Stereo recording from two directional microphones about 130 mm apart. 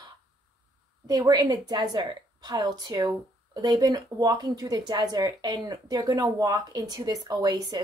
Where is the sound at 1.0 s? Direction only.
30° right (ahead or behind).